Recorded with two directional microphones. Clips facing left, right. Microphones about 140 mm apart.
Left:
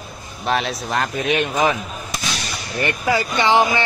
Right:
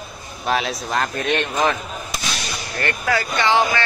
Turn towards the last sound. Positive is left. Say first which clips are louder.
# left 2 dB
turn(degrees=15)  # may be behind; listen again after turning